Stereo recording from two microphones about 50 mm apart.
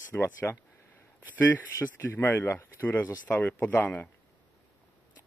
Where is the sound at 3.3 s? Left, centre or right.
Left.